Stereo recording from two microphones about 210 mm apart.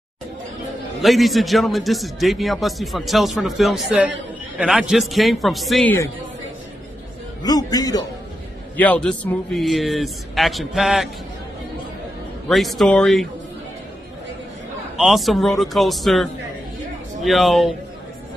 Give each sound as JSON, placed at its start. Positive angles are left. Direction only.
{"t": 1.0, "sound": "a man's voice", "side_deg": 0}
{"t": 7.4, "sound": "a man's voice", "side_deg": 20}
{"t": 8.7, "sound": "a man's voice", "side_deg": 5}
{"t": 12.4, "sound": "a man's voice", "side_deg": 0}
{"t": 15.0, "sound": "a man's voice", "side_deg": 0}